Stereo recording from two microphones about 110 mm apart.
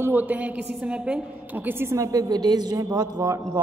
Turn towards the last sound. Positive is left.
turn(degrees=-35)  # may be behind; listen again after turning